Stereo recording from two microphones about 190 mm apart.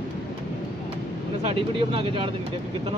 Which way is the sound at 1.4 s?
30° right (ahead or behind).